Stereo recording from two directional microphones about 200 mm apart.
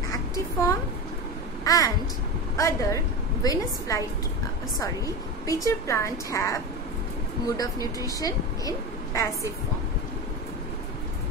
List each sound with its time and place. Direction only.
0.1 s a sound: 15° left (ahead or behind)
1.6 s a woman's voice: 15° left (ahead or behind)
8.1 s a woman's voice: 15° left (ahead or behind)